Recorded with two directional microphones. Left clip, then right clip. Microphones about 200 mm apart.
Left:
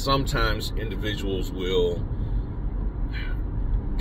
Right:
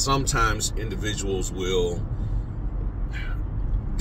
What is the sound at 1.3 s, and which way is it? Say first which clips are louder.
Speech: right 2 dB; 15° right (ahead or behind).